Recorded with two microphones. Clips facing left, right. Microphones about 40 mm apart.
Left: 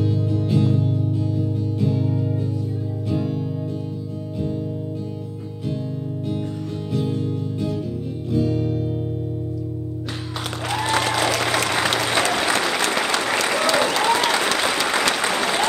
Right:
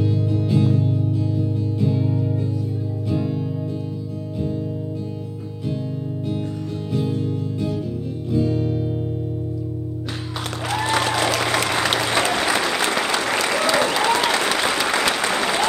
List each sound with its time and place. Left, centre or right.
0.0 s music: centre
1.1 s music: centre
6.9 s music: centre
10.6 s applause: centre